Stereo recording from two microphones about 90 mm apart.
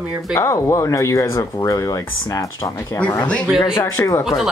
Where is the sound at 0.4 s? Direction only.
35° left (ahead or behind).